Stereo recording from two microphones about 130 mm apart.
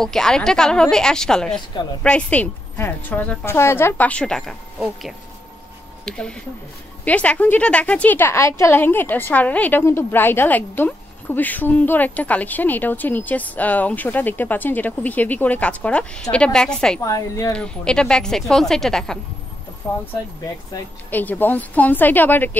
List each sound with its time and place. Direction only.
0.0 s a woman's voice: 5° left (ahead or behind)
17.0 s speech: 25° left (ahead or behind)
17.5 s speech: 5° left (ahead or behind)
19.8 s speech: 20° left (ahead or behind)
21.1 s a woman's voice: 15° left (ahead or behind)